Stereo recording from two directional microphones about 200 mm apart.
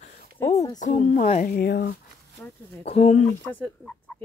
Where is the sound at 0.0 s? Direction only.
35° left (ahead or behind).